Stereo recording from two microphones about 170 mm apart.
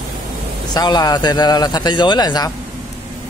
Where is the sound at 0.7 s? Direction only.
25° left (ahead or behind).